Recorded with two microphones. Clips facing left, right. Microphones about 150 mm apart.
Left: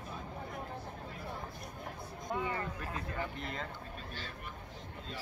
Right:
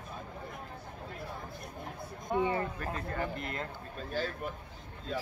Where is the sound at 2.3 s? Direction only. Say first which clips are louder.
Right 7 dB; 25° right (ahead or behind).